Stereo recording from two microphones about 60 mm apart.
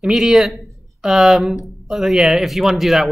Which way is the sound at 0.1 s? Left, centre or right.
Centre.